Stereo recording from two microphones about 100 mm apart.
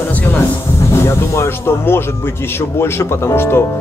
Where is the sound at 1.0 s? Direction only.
25° left (ahead or behind).